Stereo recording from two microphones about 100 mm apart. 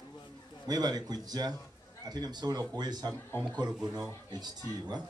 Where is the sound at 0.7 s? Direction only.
40° right (ahead or behind).